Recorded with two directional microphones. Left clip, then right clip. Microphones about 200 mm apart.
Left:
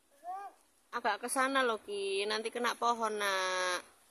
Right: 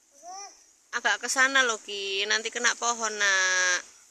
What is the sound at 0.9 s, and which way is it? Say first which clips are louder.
Speech: right 7 dB; 5° left (ahead or behind).